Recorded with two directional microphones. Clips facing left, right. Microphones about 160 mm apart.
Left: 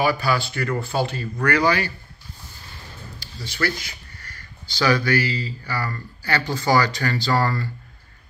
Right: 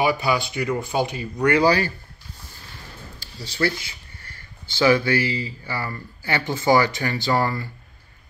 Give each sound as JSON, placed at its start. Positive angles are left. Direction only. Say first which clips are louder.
{"t": 0.0, "sound": "speech", "louder": "even", "side_deg": -20}
{"t": 3.3, "sound": "speech", "louder": "right 2 dB", "side_deg": -30}